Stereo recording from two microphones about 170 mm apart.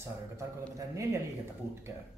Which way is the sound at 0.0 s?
15° right (ahead or behind).